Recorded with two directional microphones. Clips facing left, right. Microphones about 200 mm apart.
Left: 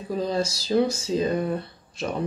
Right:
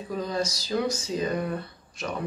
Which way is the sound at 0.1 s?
30° left (ahead or behind).